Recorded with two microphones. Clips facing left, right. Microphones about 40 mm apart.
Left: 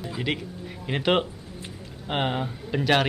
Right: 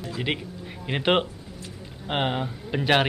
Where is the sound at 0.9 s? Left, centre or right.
Centre.